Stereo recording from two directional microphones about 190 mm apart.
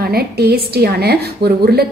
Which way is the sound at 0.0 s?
55° right (ahead or behind).